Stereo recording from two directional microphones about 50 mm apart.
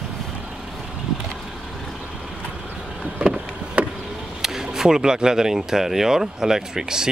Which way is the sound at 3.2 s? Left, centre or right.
Right.